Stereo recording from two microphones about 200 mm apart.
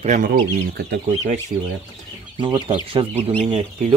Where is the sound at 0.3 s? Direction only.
50° right (ahead or behind).